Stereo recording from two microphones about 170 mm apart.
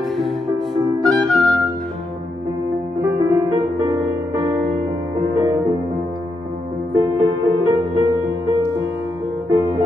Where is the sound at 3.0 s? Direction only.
20° right (ahead or behind).